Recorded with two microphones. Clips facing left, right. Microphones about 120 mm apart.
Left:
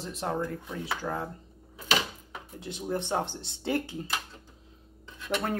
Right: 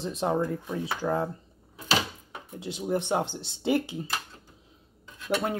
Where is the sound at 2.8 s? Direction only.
15° right (ahead or behind).